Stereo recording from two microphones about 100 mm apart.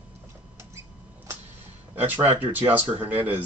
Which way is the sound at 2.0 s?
20° right (ahead or behind).